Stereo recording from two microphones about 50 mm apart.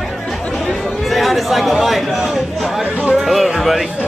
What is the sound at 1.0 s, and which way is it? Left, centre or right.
Speech, centre.